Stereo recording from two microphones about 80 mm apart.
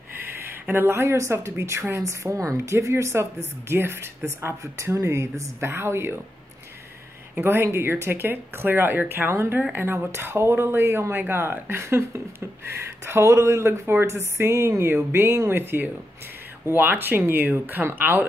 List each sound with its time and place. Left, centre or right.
0.3 s a woman's voice: right
7.3 s a woman's voice: right